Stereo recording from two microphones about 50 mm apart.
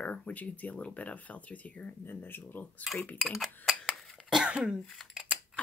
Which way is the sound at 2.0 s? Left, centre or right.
Left.